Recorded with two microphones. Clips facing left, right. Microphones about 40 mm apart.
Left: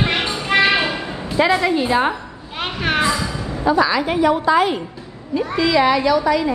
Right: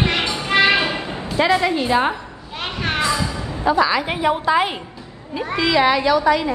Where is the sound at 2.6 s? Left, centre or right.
Centre.